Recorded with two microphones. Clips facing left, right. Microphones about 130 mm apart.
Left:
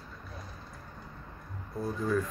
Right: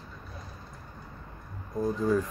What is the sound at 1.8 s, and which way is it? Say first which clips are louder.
Speech: right 4 dB; 15° right (ahead or behind).